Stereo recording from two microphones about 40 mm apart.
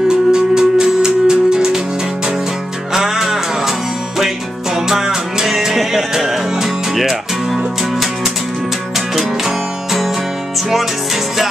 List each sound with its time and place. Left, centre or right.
0.1 s music: centre
2.9 s music: centre
4.8 s music: centre